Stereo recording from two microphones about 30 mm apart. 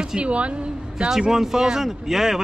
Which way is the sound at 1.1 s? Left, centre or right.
Centre.